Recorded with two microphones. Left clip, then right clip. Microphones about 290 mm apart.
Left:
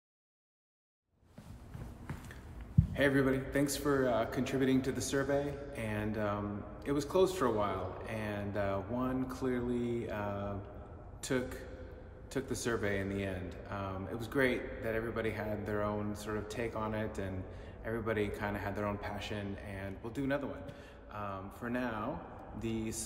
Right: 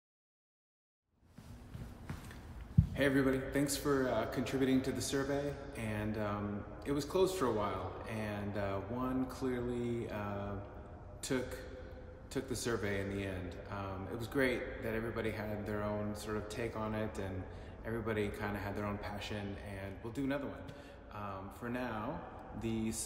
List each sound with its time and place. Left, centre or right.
2.9 s a man's voice: centre